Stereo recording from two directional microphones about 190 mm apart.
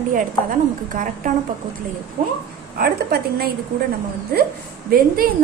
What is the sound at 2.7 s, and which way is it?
Speech, 55° right (ahead or behind).